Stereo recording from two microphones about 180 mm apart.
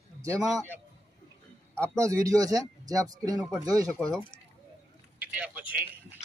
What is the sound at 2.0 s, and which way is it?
Speech, 15° right (ahead or behind).